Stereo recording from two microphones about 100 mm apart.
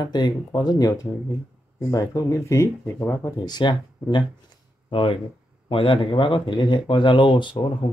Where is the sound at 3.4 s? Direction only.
50° left (ahead or behind).